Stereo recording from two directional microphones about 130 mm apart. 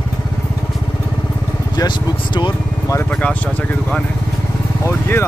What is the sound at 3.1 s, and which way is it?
Speech, 10° left (ahead or behind).